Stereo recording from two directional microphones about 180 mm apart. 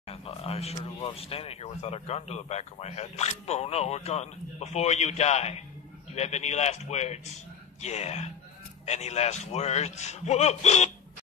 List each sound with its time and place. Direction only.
0.1 s speech: 35° left (ahead or behind)